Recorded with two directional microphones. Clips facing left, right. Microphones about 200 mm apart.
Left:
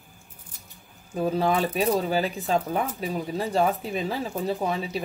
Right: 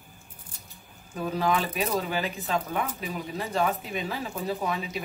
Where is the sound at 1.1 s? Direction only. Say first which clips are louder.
Left 3 dB; 30° left (ahead or behind).